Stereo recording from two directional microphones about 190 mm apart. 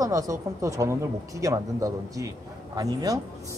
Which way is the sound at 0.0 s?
15° right (ahead or behind).